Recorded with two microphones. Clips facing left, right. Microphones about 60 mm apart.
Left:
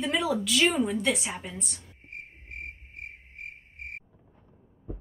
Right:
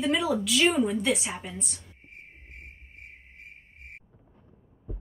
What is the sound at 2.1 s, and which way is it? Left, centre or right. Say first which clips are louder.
Cricket: left 7 dB; left.